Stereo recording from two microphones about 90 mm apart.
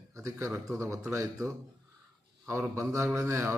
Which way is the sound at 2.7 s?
30° right (ahead or behind).